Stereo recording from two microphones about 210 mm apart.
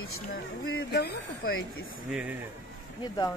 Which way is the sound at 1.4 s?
80° left.